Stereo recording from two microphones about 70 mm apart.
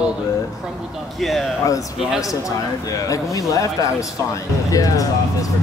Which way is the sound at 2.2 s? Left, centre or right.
Left.